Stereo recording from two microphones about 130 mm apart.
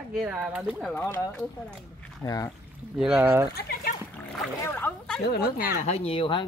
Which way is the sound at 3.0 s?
10° right (ahead or behind).